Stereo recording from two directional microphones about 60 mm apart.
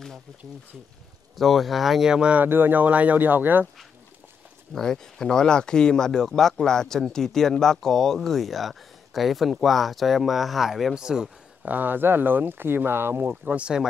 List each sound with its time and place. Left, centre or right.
1.3 s speech: centre
2.3 s speech: right
4.7 s speech: centre
11.0 s a man's voice: centre
11.6 s speech: right
13.5 s speech: right